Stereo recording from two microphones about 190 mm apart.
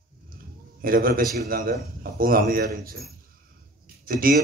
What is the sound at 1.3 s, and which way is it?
A man's voice, 50° right (ahead or behind).